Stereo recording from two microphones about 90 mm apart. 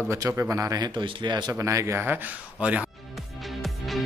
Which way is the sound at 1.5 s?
35° right (ahead or behind).